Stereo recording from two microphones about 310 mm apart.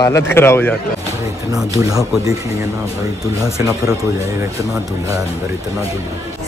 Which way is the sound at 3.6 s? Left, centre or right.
Centre.